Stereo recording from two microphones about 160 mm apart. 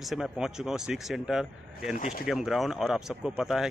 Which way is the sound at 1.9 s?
50° left (ahead or behind).